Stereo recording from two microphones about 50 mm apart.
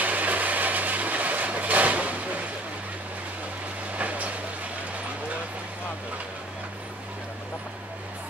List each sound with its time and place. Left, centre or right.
0.0 s vehicle: right
3.9 s vehicle: right